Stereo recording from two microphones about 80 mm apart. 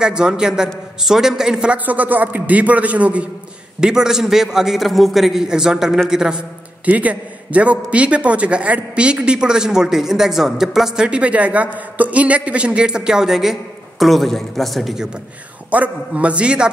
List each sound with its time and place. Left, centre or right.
0.0 s a man's voice: centre
6.9 s a man's voice: centre
15.7 s a man's voice: centre